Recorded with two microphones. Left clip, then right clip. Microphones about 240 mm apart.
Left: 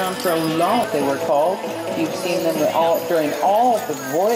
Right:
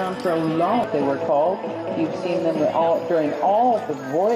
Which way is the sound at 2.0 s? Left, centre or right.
Centre.